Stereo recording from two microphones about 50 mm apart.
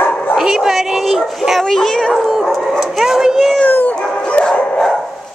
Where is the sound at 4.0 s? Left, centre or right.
Left.